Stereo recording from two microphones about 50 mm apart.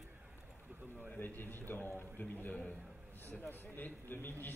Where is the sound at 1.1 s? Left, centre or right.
Left.